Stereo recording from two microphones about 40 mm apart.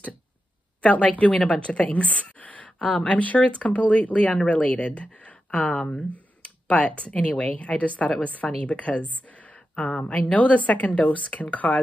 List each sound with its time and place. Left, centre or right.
0.8 s a woman's voice: left
9.3 s a sound: left
10.3 s a woman's voice: left